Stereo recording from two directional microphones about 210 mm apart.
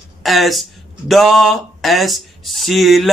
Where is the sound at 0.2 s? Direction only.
Centre (ahead or behind).